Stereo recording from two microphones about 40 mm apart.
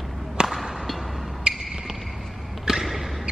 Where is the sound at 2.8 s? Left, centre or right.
Centre.